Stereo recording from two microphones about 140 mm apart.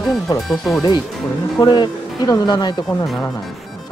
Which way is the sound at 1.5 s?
30° left (ahead or behind).